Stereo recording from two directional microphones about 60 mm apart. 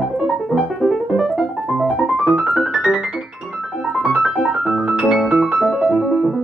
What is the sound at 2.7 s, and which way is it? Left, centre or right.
Piano, centre.